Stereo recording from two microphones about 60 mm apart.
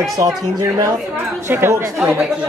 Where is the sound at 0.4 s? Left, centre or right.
Right.